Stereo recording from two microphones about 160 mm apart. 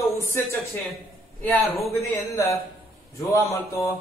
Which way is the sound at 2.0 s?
20° left (ahead or behind).